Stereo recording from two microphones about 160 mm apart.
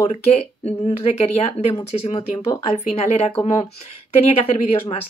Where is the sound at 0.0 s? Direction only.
40° left (ahead or behind).